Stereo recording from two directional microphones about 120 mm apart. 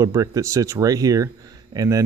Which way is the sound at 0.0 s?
30° right (ahead or behind).